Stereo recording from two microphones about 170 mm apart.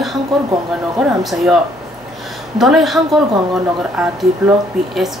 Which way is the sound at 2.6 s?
Centre (ahead or behind).